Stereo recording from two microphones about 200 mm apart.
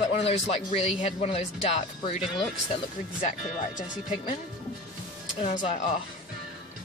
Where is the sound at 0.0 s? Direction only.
30° left (ahead or behind).